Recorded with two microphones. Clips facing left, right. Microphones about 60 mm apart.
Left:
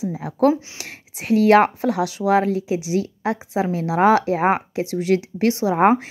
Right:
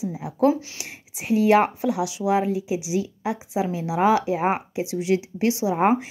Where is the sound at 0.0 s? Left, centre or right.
Left.